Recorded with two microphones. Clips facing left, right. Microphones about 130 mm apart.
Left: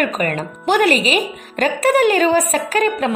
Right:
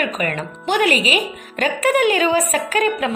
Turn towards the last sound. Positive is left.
turn(degrees=40)  # may be behind; listen again after turning